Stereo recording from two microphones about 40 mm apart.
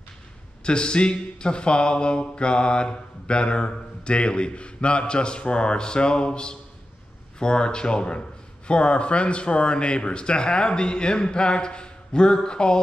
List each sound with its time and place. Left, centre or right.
0.7 s speech: left